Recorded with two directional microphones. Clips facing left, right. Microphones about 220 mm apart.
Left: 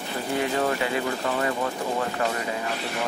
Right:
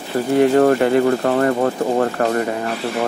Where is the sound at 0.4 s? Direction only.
55° right (ahead or behind).